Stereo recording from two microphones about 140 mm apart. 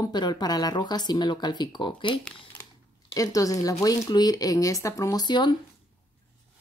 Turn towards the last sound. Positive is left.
turn(degrees=30)  # may be behind; listen again after turning